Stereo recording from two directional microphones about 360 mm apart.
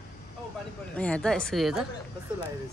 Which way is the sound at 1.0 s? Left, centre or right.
Centre.